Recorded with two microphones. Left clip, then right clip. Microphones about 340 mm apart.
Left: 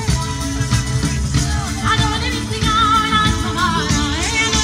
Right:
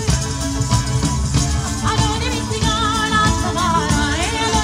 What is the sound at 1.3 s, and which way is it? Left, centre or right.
Music, centre.